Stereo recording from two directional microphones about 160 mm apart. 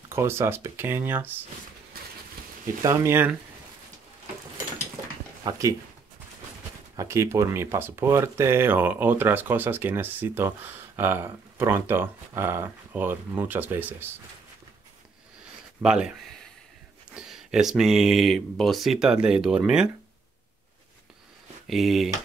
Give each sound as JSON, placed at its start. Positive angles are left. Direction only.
{"t": 0.1, "sound": "speech", "side_deg": -15}
{"t": 2.8, "sound": "speech", "side_deg": -15}
{"t": 5.4, "sound": "speech", "side_deg": -20}
{"t": 7.0, "sound": "speech", "side_deg": -20}
{"t": 15.8, "sound": "speech", "side_deg": -5}
{"t": 21.6, "sound": "speech", "side_deg": 0}